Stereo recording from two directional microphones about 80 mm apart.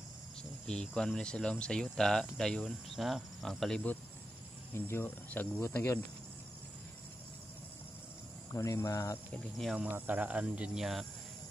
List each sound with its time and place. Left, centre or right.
0.7 s speech: centre
2.6 s speech: centre
4.7 s speech: left
8.6 s speech: left
9.8 s speech: right
10.8 s speech: centre